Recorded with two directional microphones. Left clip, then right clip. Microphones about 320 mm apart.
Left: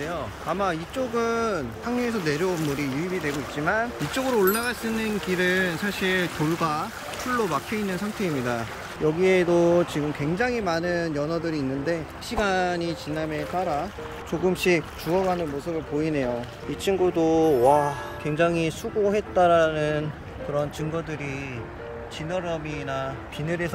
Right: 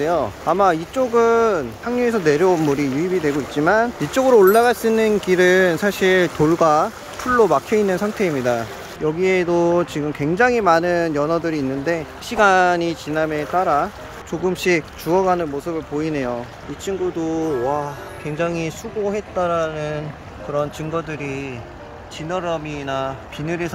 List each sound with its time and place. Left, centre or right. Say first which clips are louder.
0.0 s speech: right 11 dB; centre
20.5 s speech: right 5 dB; centre